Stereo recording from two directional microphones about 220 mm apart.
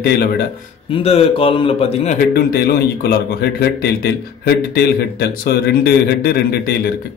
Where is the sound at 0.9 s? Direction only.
25° left (ahead or behind); by 6.7 s 45° left (ahead or behind).